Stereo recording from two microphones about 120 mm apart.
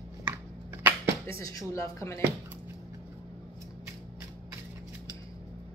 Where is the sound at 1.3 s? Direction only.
25° left (ahead or behind).